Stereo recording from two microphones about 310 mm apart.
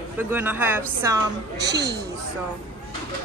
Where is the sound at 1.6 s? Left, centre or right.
Right.